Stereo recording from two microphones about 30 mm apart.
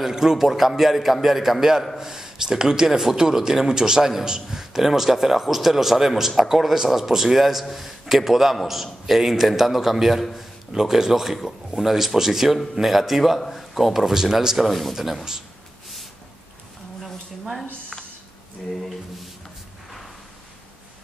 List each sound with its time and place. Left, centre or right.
0.1 s speech: centre
0.4 s speech: centre
2.9 s a man's voice: centre
10.7 s a man's voice: centre
14.7 s a man's voice: centre